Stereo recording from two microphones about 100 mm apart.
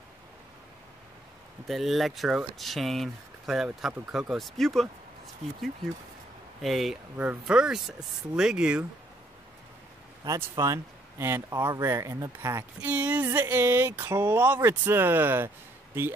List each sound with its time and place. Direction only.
1.7 s speech: centre (ahead or behind)
6.6 s speech: centre (ahead or behind)
7.2 s speech: 15° right (ahead or behind)
10.2 s speech: 35° right (ahead or behind)
12.8 s speech: 15° right (ahead or behind)